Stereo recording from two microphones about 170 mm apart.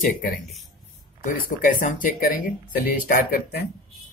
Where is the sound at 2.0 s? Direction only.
55° left (ahead or behind).